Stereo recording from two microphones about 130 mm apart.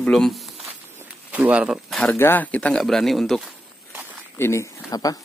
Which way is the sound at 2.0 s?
15° left (ahead or behind).